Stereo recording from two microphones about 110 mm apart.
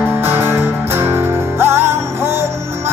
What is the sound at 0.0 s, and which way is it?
Music, 20° right (ahead or behind).